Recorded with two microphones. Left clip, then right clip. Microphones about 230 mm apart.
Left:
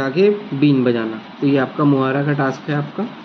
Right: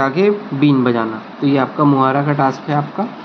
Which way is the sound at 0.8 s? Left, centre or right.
Centre.